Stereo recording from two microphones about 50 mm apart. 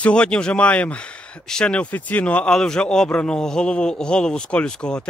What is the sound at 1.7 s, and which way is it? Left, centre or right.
Speech, left.